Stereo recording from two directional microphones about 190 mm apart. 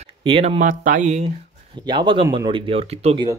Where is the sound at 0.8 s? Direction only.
40° right (ahead or behind).